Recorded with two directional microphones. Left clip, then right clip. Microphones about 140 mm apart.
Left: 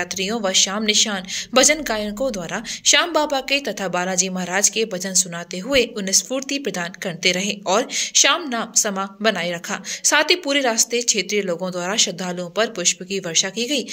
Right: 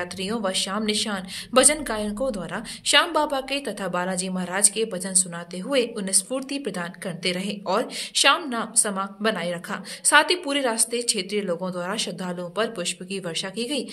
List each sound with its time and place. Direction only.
0.0 s a woman's voice: 25° left (ahead or behind)